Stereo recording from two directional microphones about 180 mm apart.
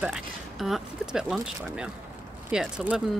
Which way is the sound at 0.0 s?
Centre (ahead or behind).